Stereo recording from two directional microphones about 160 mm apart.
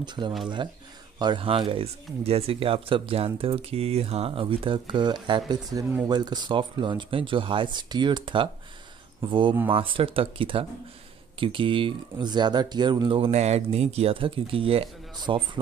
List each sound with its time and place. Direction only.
0.0 s speech: 25° right (ahead or behind)